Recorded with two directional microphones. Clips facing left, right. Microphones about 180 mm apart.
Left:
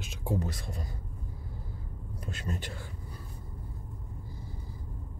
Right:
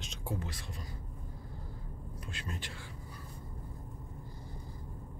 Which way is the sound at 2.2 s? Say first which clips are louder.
Left 7 dB; 40° left (ahead or behind).